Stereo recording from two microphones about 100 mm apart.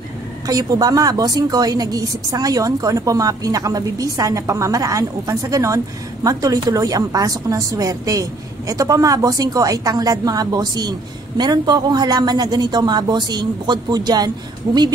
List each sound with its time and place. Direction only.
0.5 s a woman's voice: 35° right (ahead or behind)